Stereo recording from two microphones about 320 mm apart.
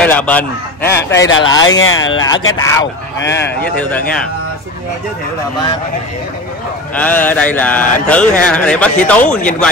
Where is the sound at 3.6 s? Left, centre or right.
Centre.